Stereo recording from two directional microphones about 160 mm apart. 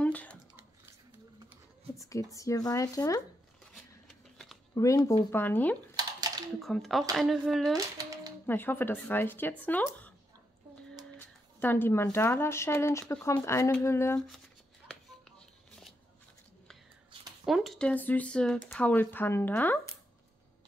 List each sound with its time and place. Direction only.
0.0 s typing: 10° left (ahead or behind)
2.0 s speech: 20° left (ahead or behind)
3.7 s a sound: centre (ahead or behind)
4.7 s speech: 20° left (ahead or behind); by 7.7 s centre (ahead or behind)
7.7 s music: 20° right (ahead or behind)
8.5 s speech: 15° left (ahead or behind)
11.1 s speech: 15° left (ahead or behind)
17.5 s speech: centre (ahead or behind)